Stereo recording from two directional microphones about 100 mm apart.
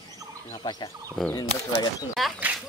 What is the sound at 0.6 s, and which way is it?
Speech, 45° left (ahead or behind).